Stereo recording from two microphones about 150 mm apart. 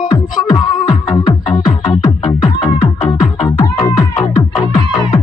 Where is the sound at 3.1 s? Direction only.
25° left (ahead or behind).